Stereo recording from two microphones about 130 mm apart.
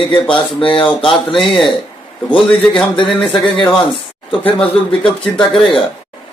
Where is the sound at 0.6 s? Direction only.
40° left (ahead or behind).